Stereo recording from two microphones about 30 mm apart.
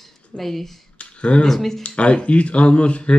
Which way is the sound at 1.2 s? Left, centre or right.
Left.